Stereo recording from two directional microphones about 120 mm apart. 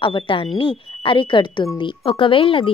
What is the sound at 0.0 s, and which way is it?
Speech, 45° left (ahead or behind).